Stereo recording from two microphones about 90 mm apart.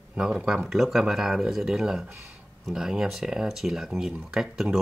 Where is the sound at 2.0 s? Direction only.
30° right (ahead or behind).